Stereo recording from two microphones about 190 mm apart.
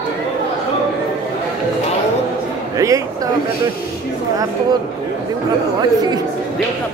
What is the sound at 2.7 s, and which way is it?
Speech, 15° right (ahead or behind).